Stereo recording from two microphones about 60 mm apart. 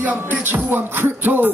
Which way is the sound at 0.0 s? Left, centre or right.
Right.